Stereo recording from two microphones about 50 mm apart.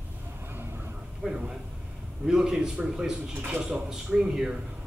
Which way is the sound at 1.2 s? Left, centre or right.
Centre.